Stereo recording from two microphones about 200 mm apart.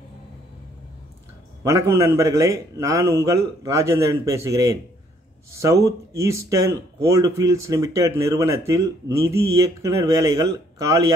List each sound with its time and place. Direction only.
1.6 s speech: 15° right (ahead or behind)